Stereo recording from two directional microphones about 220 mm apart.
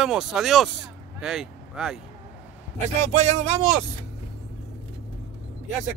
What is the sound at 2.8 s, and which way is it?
Speech, 30° right (ahead or behind).